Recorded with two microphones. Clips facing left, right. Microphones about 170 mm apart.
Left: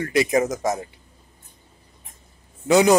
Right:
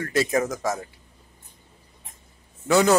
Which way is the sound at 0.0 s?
15° left (ahead or behind).